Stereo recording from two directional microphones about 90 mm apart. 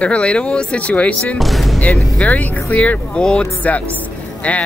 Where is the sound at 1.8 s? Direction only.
15° left (ahead or behind).